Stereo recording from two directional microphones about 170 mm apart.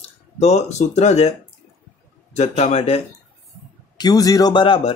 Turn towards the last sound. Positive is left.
turn(degrees=30)  # may be behind; listen again after turning